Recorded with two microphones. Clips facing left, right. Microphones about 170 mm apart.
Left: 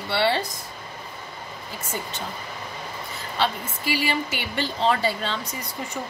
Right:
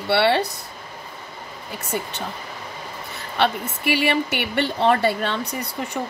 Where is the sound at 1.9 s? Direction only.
60° right (ahead or behind).